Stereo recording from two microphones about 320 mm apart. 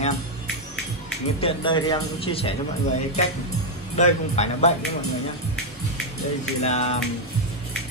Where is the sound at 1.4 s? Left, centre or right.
Centre.